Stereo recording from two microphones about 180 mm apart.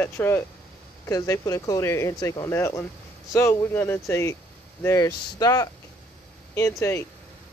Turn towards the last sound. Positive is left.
turn(degrees=15)  # may be behind; listen again after turning